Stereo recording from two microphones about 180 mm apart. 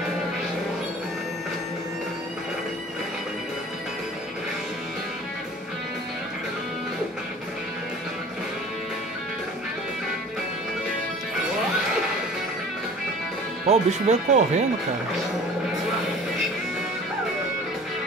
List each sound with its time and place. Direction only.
13.7 s speech: 40° right (ahead or behind)